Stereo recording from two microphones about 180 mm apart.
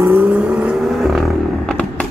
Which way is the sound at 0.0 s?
10° right (ahead or behind).